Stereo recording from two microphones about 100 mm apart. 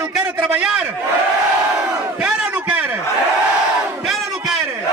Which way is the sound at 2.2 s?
10° right (ahead or behind).